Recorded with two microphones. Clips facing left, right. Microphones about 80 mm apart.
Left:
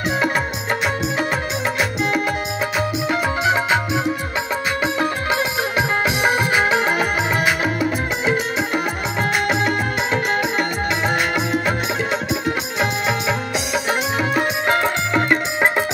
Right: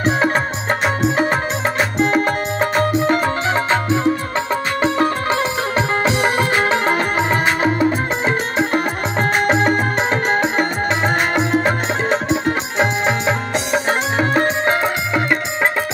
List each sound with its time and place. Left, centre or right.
1.8 s music: right
3.1 s music: centre
4.9 s music: right
6.5 s music: centre
7.2 s music: right